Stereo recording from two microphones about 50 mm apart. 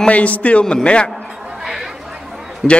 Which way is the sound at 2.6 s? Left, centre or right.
Centre.